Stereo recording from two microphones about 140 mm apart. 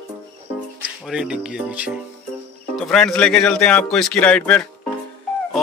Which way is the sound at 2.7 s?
5° left (ahead or behind).